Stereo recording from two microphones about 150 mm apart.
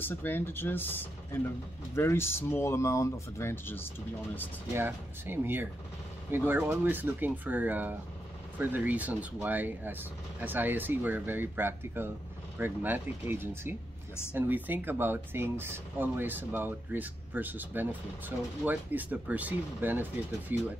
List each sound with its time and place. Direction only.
0.0 s speech: 15° left (ahead or behind)
4.7 s speech: 15° right (ahead or behind)